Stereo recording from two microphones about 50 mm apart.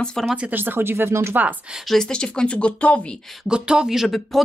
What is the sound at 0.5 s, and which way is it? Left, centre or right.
Speech, right.